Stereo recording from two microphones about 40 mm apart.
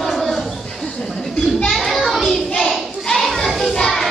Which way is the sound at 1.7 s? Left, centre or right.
Centre.